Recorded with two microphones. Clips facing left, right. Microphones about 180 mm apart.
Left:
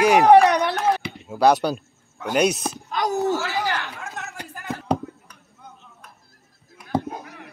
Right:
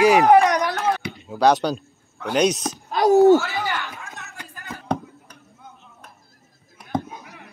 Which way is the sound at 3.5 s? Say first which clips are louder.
Left 1 dB; 40° left (ahead or behind).